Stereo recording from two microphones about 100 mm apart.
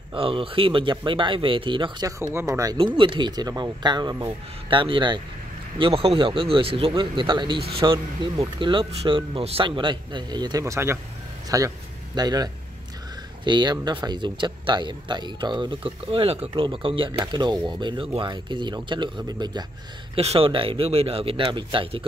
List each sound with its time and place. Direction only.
0.1 s speech: 65° right (ahead or behind)
2.0 s speech: 30° right (ahead or behind)
3.0 s speech: 50° right (ahead or behind)
5.8 s speech: 70° right (ahead or behind)
9.7 s speech: 55° right (ahead or behind)
10.6 s speech: 25° right (ahead or behind); by 16.6 s 75° right (ahead or behind)
16.6 s speech: 60° right (ahead or behind)
20.2 s speech: 80° right
21.4 s speech: 55° right (ahead or behind)